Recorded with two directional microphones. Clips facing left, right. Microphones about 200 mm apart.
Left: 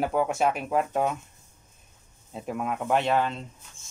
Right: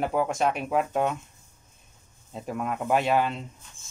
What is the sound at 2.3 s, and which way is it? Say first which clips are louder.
Speech: even; centre (ahead or behind).